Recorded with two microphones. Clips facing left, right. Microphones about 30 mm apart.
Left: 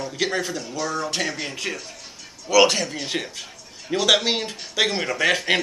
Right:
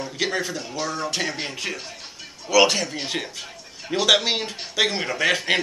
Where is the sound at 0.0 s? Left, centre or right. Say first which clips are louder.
Left 1 dB; centre.